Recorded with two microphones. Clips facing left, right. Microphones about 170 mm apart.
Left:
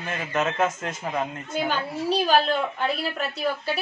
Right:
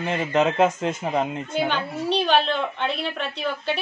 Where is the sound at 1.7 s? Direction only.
5° left (ahead or behind).